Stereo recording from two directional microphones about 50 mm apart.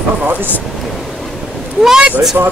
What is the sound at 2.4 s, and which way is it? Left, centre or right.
Speech, right.